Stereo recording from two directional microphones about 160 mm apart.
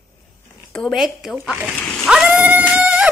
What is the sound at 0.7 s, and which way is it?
Speech, 5° left (ahead or behind).